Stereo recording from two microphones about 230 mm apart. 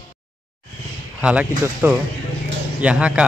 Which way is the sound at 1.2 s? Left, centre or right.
Centre.